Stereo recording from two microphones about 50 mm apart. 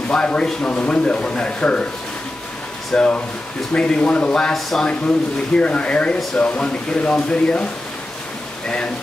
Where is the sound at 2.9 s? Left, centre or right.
Left.